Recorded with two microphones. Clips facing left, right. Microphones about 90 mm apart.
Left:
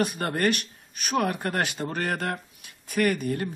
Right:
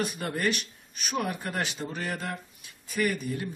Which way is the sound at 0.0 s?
55° left (ahead or behind).